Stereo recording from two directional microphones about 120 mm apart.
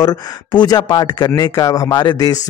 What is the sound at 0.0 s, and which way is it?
A man's voice, 35° left (ahead or behind).